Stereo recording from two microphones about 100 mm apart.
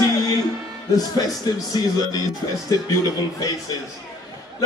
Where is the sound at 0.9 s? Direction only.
40° left (ahead or behind).